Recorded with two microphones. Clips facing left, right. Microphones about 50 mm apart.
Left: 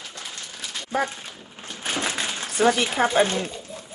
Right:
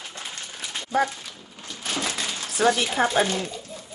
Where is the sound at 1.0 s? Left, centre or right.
Left.